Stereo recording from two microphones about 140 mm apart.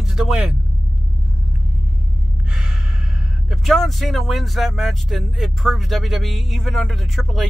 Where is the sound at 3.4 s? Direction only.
Centre (ahead or behind).